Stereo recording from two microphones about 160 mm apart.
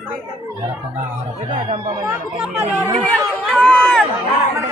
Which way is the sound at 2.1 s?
10° right (ahead or behind).